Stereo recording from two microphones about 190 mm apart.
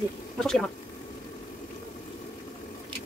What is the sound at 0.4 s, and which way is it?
Speech, centre (ahead or behind).